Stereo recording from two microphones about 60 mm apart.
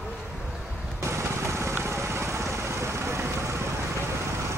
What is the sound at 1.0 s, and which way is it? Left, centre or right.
Vehicle, right.